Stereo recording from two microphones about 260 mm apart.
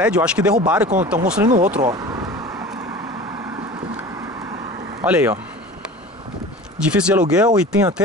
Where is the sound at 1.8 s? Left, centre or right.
Centre.